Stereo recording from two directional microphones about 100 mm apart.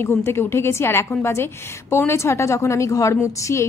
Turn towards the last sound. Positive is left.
turn(degrees=30)  # may be behind; listen again after turning